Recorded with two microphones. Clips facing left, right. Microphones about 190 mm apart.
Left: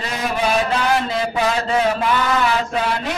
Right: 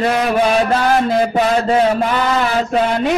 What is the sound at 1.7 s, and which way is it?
Speech, 35° right (ahead or behind).